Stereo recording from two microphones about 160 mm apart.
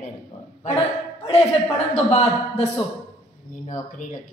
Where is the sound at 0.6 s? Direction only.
40° left (ahead or behind).